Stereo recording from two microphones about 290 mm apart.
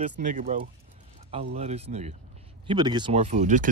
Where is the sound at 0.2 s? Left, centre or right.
Right.